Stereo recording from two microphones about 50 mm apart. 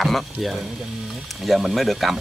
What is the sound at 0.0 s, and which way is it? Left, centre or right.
Speech, centre.